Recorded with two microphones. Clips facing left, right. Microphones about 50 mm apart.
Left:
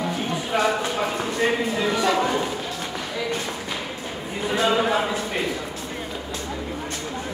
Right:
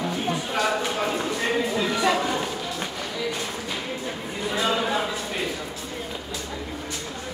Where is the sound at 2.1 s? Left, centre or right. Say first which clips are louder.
Left 3 dB; centre.